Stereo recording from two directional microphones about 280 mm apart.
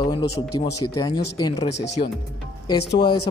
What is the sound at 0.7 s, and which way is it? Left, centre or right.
Speech, left.